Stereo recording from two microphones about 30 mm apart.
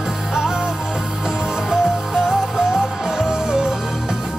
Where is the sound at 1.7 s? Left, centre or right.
Centre.